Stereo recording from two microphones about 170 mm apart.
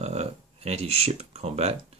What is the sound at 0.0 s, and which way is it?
Speech, 40° right (ahead or behind).